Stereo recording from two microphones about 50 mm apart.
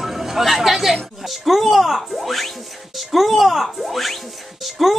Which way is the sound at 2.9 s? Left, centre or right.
Centre.